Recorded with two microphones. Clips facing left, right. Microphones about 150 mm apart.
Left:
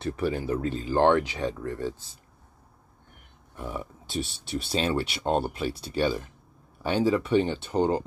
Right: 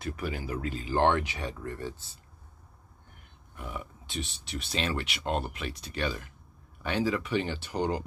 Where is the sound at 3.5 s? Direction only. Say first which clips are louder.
Left 5 dB; 30° left (ahead or behind).